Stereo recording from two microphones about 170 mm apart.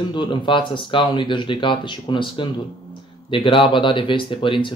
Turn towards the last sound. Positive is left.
turn(degrees=30)  # may be behind; listen again after turning